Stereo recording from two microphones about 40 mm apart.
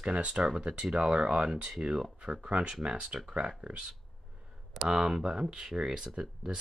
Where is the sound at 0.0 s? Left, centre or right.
Right.